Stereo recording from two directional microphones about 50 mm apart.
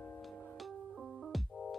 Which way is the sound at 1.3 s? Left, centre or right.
Centre.